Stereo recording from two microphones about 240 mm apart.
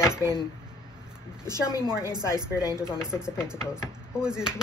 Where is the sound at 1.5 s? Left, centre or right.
Centre.